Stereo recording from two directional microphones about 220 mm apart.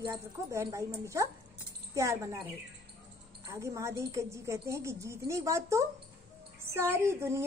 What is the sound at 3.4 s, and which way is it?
A woman's voice, 15° right (ahead or behind).